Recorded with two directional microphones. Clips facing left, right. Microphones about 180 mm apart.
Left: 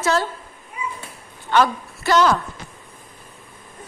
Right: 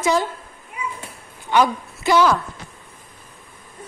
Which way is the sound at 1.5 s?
10° right (ahead or behind).